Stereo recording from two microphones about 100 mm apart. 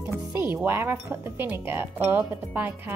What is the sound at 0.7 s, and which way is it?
Chink, 20° right (ahead or behind).